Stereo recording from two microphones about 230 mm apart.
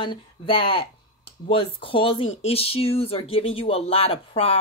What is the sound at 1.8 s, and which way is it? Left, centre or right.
Speech, left.